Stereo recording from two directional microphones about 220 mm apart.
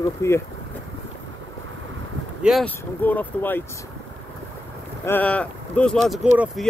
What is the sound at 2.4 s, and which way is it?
Speech, 5° left (ahead or behind).